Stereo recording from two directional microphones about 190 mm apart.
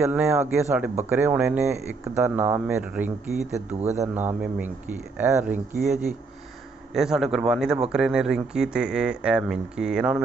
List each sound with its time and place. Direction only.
0.0 s speech: 10° right (ahead or behind)
3.5 s a man's voice: 35° right (ahead or behind)
4.1 s speech: 10° right (ahead or behind)